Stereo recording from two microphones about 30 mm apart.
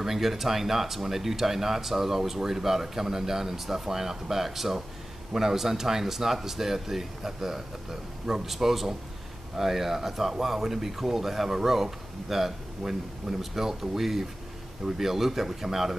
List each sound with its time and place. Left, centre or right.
0.0 s speech: centre